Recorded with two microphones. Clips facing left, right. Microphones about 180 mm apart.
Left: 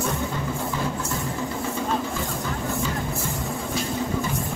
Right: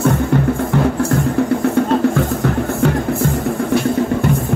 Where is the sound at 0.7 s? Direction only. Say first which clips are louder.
Right 12 dB; 70° right (ahead or behind).